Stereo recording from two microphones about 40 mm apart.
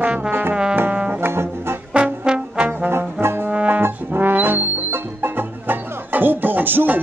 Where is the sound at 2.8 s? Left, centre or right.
Right.